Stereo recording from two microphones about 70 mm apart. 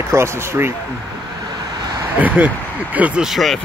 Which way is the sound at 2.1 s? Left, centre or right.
Right.